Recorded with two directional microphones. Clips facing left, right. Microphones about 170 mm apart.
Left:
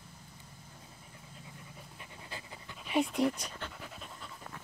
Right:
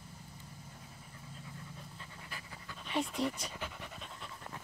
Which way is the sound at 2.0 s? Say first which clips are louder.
Left 2 dB; 20° left (ahead or behind).